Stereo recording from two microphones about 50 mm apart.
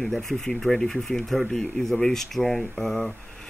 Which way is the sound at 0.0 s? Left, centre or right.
Centre.